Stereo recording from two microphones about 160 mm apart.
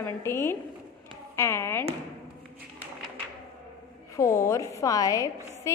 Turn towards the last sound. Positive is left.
turn(degrees=20)  # may be behind; listen again after turning